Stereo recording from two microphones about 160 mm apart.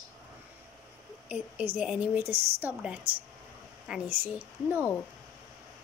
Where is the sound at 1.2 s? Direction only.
10° right (ahead or behind).